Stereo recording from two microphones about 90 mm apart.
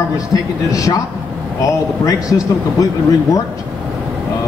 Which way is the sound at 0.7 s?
40° left (ahead or behind).